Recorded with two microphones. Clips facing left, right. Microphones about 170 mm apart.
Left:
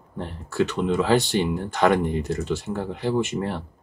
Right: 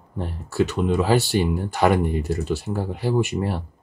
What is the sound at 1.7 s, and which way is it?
Speech, 15° right (ahead or behind).